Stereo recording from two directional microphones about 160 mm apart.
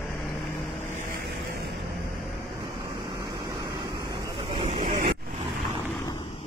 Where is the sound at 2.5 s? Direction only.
30° right (ahead or behind).